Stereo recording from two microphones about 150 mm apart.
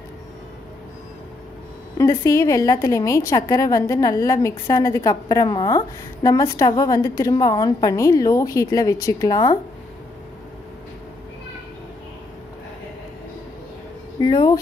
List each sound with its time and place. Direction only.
2.0 s a woman's voice: 20° left (ahead or behind)
14.2 s a woman's voice: 30° left (ahead or behind)